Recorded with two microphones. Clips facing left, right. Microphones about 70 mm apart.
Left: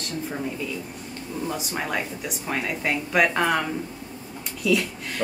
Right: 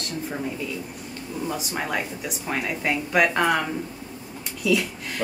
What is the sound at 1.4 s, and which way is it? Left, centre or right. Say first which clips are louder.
A woman's voice: right 1 dB; centre.